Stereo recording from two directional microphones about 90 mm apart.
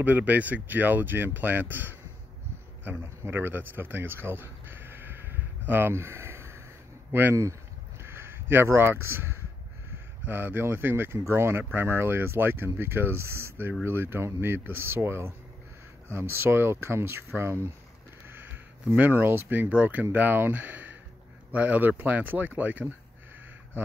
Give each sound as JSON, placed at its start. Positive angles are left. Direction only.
{"t": 0.0, "sound": "speech", "side_deg": -20}
{"t": 2.8, "sound": "a sound", "side_deg": -25}
{"t": 7.1, "sound": "speech", "side_deg": -25}